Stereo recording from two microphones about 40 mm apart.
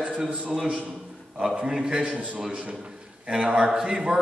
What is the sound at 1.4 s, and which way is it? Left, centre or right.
Speech, centre.